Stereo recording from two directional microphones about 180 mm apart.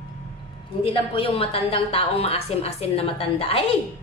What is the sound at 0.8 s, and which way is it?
A woman's voice, 30° left (ahead or behind).